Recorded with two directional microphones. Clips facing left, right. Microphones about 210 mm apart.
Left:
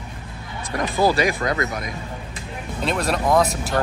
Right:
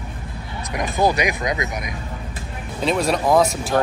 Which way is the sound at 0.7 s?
15° right (ahead or behind).